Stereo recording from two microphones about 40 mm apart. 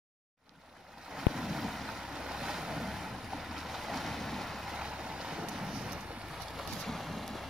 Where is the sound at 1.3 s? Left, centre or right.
Centre.